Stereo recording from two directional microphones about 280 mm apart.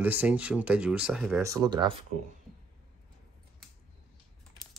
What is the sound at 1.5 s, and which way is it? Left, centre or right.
Speech, centre.